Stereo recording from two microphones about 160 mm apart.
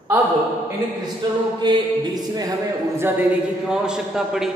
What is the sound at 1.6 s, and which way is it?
Music, 25° right (ahead or behind).